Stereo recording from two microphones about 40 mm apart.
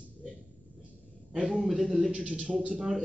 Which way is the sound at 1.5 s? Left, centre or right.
Centre.